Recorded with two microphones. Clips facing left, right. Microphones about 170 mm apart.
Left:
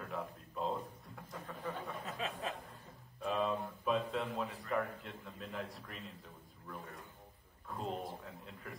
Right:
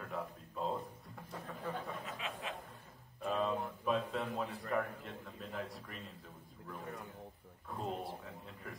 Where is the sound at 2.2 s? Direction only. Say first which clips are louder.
Left 3 dB; 35° left (ahead or behind).